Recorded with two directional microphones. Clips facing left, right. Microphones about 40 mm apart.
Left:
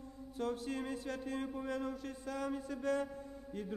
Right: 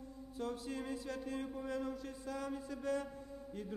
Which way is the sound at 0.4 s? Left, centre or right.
Left.